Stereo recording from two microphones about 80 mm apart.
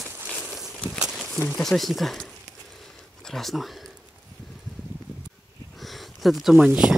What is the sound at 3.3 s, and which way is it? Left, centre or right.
Speech, centre.